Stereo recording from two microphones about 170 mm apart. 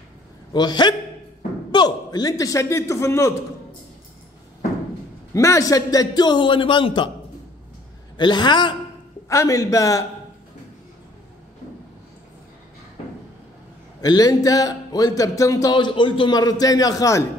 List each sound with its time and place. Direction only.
0.5 s a man's voice: 25° left (ahead or behind)
5.3 s speech: 15° left (ahead or behind)
8.2 s speech: 25° left (ahead or behind)
14.0 s speech: 25° left (ahead or behind)